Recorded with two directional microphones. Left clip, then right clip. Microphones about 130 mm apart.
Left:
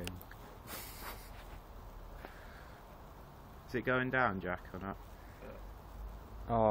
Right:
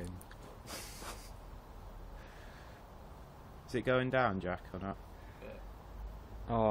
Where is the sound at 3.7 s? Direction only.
65° right (ahead or behind).